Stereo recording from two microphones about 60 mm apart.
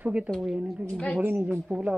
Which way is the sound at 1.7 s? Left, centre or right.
Centre.